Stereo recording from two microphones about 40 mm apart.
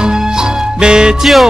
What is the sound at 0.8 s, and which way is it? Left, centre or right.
Music, centre.